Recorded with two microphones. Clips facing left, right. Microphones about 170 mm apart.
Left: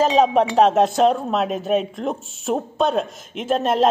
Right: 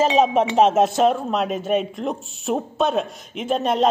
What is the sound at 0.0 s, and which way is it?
Speech, centre (ahead or behind).